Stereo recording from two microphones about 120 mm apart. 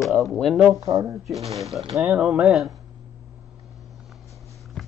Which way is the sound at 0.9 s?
25° right (ahead or behind).